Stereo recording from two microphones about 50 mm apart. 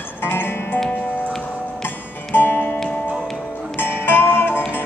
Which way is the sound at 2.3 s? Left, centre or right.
Left.